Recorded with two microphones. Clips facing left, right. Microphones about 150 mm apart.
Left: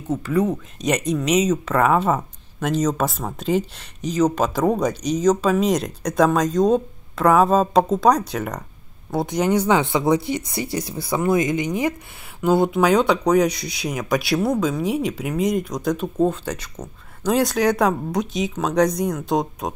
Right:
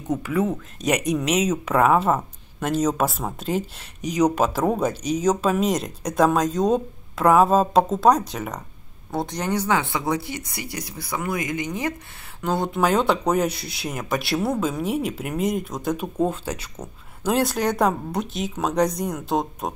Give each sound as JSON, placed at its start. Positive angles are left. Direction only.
{"t": 0.1, "sound": "speech", "side_deg": -10}
{"t": 4.0, "sound": "speech", "side_deg": -10}
{"t": 9.1, "sound": "speech", "side_deg": 10}